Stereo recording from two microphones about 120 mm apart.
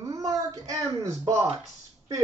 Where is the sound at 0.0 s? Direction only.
30° right (ahead or behind).